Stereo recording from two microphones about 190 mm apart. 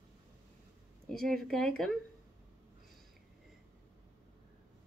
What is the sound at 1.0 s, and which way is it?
Speech, centre (ahead or behind).